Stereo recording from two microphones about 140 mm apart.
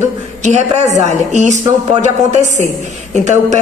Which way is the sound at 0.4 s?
55° right (ahead or behind).